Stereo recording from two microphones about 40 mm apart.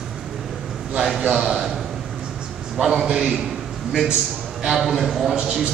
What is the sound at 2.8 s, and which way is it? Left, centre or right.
Speech, centre.